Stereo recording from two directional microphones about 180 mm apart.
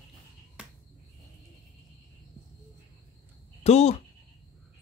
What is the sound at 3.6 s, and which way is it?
Speech, 35° left (ahead or behind).